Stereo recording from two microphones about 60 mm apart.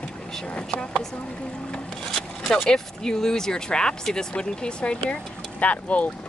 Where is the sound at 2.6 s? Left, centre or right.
Centre; by 6.1 s left.